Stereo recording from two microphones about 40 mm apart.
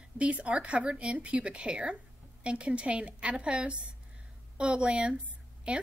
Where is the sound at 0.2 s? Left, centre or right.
Right.